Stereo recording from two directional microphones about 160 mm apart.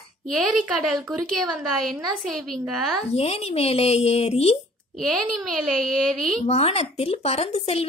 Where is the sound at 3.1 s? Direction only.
40° left (ahead or behind).